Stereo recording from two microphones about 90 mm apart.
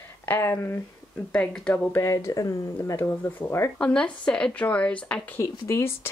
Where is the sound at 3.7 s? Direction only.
10° left (ahead or behind).